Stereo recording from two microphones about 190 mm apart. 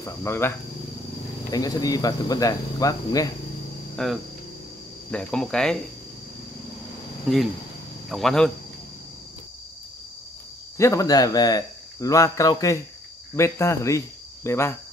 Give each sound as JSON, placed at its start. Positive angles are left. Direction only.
{"t": 0.0, "sound": "speech", "side_deg": 15}
{"t": 3.9, "sound": "cricket", "side_deg": 0}
{"t": 5.1, "sound": "speech", "side_deg": 5}
{"t": 8.1, "sound": "speech", "side_deg": 0}
{"t": 10.8, "sound": "speech", "side_deg": 15}
{"t": 13.4, "sound": "cricket", "side_deg": 15}